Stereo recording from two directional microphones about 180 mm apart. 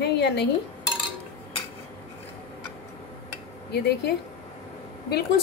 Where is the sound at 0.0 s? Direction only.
70° left (ahead or behind).